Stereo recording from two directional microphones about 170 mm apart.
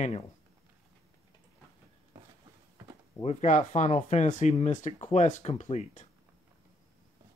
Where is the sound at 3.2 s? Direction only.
40° left (ahead or behind).